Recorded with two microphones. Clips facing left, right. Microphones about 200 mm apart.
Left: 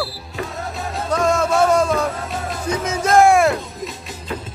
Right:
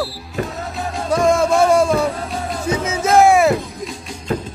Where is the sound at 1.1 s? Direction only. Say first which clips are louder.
Right 3 dB; 10° right (ahead or behind).